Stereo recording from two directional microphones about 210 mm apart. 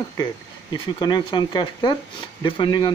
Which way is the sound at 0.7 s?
20° left (ahead or behind).